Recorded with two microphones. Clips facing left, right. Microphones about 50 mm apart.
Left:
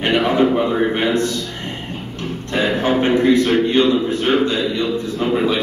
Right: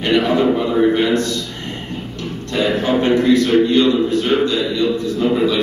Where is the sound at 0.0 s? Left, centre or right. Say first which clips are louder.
Even; left.